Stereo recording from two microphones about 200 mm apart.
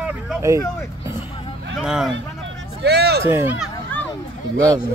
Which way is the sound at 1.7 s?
5° right (ahead or behind).